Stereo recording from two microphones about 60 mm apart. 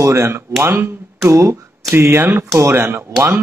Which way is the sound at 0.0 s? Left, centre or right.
Right.